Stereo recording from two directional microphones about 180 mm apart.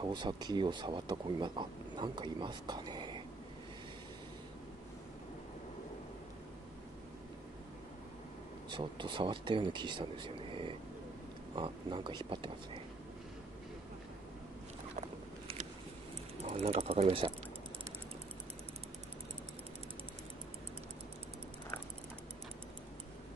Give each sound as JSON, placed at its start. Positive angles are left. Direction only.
{"t": 0.0, "sound": "speech", "side_deg": -25}
{"t": 8.6, "sound": "speech", "side_deg": -25}
{"t": 15.0, "sound": "patter", "side_deg": -40}
{"t": 16.4, "sound": "speech", "side_deg": -35}